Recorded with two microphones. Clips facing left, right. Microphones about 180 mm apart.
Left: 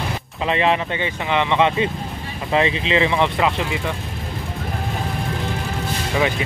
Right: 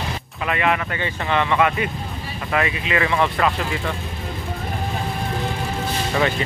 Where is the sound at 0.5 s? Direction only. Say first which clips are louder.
Left 2 dB; 25° left (ahead or behind).